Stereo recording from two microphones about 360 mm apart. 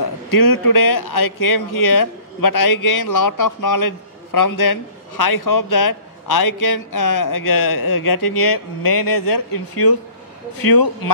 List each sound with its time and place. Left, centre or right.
0.3 s speech: left